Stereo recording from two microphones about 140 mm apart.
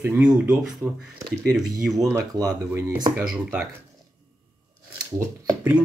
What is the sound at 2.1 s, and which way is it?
Speech, 20° right (ahead or behind).